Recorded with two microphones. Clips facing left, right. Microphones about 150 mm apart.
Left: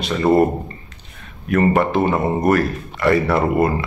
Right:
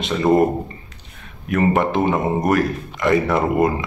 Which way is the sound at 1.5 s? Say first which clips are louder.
Left 2 dB; 15° right (ahead or behind).